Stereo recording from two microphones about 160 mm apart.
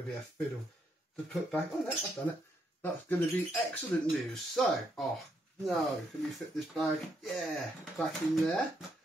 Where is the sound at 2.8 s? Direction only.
15° left (ahead or behind).